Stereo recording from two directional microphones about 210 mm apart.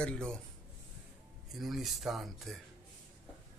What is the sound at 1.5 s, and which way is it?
Speech, centre (ahead or behind).